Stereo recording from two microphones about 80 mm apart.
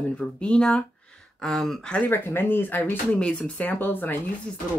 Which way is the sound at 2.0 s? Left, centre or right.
Left.